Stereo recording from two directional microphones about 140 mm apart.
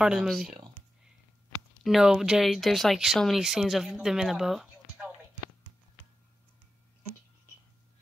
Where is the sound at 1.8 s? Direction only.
5° right (ahead or behind).